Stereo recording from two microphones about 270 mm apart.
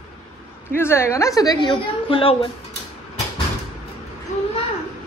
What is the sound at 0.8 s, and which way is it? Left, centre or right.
A woman's voice, centre.